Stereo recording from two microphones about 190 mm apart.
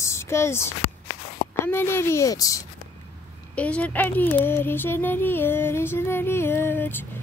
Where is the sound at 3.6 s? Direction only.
5° left (ahead or behind).